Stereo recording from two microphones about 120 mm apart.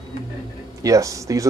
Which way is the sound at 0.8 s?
25° right (ahead or behind).